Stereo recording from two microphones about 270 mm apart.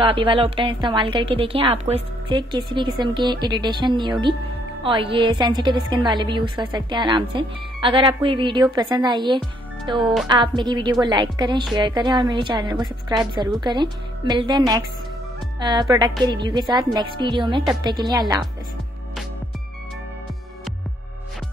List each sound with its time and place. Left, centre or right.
0.0 s a woman's voice: centre